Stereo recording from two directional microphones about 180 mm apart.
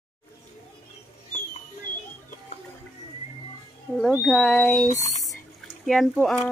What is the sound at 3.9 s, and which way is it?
Speech, centre (ahead or behind).